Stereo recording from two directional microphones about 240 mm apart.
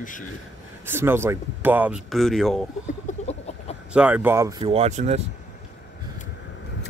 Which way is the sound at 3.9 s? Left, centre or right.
Centre.